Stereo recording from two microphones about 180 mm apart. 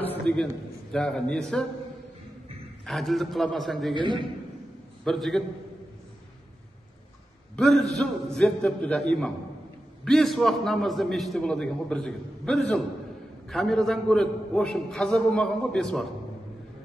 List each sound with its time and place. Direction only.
0.0 s a sound: 10° left (ahead or behind)
0.9 s a man's voice: 5° left (ahead or behind)
2.8 s a man's voice: centre (ahead or behind)
3.9 s a man's voice: 25° right (ahead or behind)
5.0 s a man's voice: centre (ahead or behind)
7.5 s a man's voice: centre (ahead or behind)